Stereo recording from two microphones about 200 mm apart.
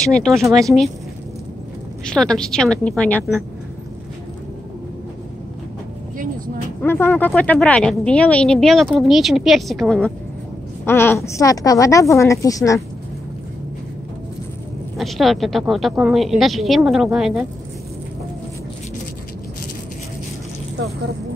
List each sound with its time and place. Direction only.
0.0 s a woman's voice: 5° left (ahead or behind)
2.0 s a woman's voice: 5° left (ahead or behind)
6.8 s a woman's voice: 10° left (ahead or behind)
15.0 s a woman's voice: centre (ahead or behind)